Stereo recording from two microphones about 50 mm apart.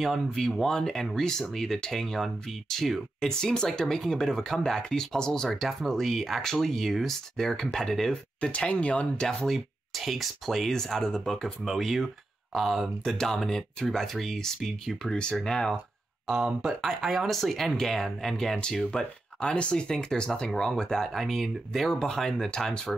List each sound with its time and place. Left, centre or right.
0.3 s speech: centre
8.1 s speech: left
9.5 s speech: centre
13.2 s speech: centre
16.3 s speech: centre